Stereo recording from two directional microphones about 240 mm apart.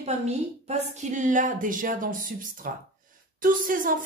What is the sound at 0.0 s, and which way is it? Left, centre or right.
A woman's voice, right.